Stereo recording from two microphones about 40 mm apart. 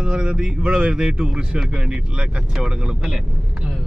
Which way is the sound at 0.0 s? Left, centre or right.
Right.